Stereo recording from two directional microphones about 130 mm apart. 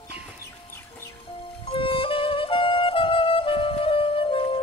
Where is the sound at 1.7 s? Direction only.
40° left (ahead or behind).